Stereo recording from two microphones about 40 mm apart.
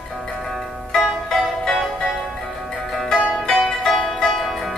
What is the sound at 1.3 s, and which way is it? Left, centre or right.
Music, centre.